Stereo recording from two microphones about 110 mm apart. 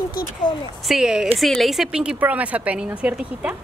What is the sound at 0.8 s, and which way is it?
A woman's voice, 5° right (ahead or behind).